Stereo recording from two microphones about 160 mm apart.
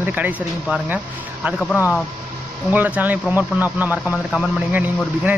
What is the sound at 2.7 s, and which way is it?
Speech, 10° right (ahead or behind).